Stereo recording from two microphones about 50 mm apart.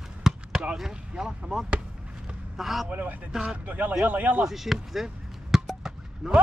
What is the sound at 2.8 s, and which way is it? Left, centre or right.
A man's voice, right.